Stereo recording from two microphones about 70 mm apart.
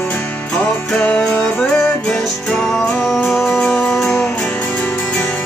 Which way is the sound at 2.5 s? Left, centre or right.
Centre.